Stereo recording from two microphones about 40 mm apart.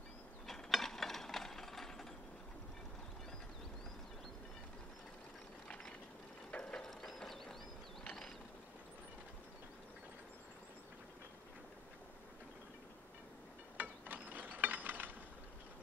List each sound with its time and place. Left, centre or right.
0.5 s a sound: centre
6.5 s mechanisms: left
6.8 s mechanisms: centre
13.7 s mechanisms: right